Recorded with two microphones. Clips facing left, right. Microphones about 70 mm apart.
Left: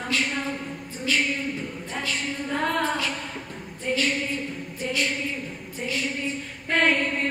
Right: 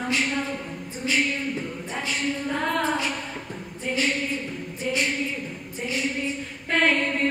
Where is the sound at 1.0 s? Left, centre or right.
Right.